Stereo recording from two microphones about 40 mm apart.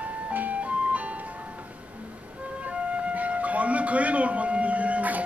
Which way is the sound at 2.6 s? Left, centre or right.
Right.